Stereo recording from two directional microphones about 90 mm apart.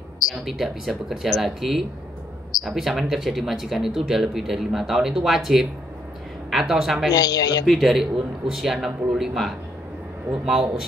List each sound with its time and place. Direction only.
0.3 s speech: 5° right (ahead or behind)
7.1 s speech: 45° left (ahead or behind)
7.6 s speech: centre (ahead or behind)